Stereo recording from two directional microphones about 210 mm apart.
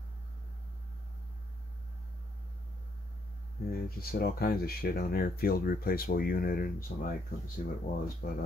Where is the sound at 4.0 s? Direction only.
45° left (ahead or behind).